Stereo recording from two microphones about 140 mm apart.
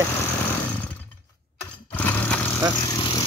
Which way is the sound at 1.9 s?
10° left (ahead or behind).